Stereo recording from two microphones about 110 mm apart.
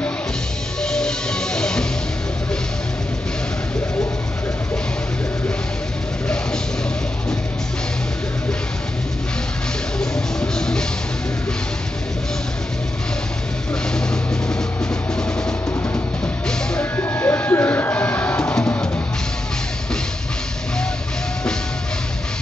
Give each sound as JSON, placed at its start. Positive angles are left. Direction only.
{"t": 0.8, "sound": "music", "side_deg": 5}
{"t": 9.9, "sound": "music", "side_deg": 5}
{"t": 16.9, "sound": "a sound", "side_deg": 20}